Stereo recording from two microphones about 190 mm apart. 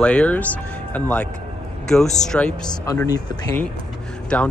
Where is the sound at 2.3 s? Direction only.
5° left (ahead or behind).